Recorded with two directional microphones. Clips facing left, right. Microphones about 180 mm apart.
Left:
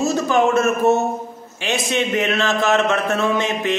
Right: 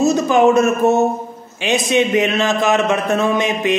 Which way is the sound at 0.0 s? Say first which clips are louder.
Right 5 dB; 15° right (ahead or behind).